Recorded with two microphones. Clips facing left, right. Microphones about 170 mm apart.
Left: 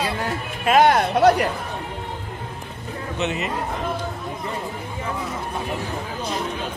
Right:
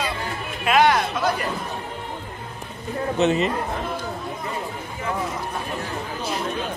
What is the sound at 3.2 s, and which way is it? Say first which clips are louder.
Speech: right 6 dB; 35° right (ahead or behind).